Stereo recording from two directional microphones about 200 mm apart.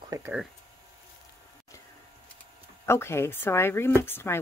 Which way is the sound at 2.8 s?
10° left (ahead or behind).